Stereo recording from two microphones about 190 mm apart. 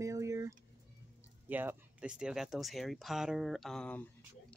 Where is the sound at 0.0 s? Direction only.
15° right (ahead or behind).